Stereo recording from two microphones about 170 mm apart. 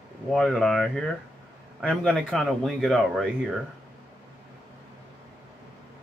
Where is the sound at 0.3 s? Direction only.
Centre (ahead or behind).